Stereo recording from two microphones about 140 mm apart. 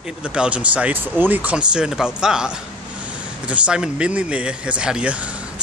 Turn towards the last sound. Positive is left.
turn(degrees=-10)  # may be behind; listen again after turning